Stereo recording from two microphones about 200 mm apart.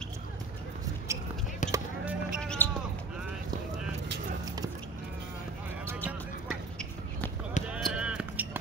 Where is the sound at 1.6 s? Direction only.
40° left (ahead or behind).